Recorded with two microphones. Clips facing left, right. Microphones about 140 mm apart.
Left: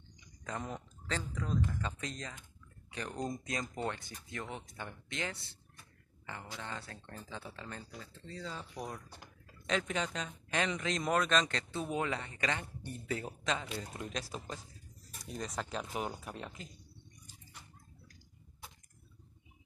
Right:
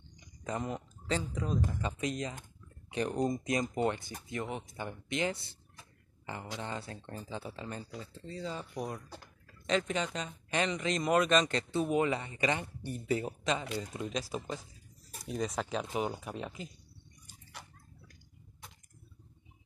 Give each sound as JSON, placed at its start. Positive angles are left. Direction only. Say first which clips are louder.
{"t": 0.4, "sound": "a sound", "louder": "right 5 dB", "side_deg": -10}
{"t": 1.1, "sound": "speech", "louder": "right 3 dB", "side_deg": -15}
{"t": 6.6, "sound": "speech", "louder": "right 5 dB", "side_deg": -20}
{"t": 8.5, "sound": "speech", "louder": "right 4 dB", "side_deg": -5}